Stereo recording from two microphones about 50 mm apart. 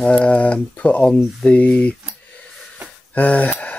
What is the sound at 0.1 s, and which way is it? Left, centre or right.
Speech, left.